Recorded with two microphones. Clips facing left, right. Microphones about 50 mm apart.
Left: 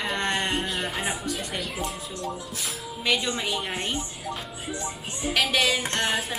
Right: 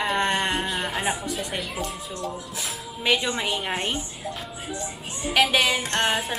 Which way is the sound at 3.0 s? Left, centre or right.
Centre.